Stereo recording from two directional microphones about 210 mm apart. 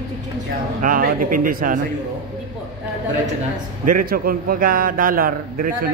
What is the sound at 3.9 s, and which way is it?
A man's voice, 45° right (ahead or behind).